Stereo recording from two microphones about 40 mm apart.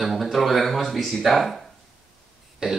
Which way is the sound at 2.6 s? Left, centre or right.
Right.